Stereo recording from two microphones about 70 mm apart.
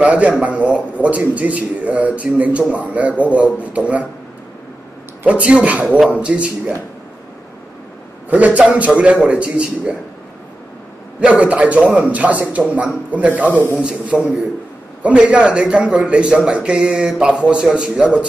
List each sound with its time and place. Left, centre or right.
0.0 s a man's voice: centre
5.2 s speech: centre
8.3 s a man's voice: centre
11.1 s a man's voice: centre
15.3 s speech: centre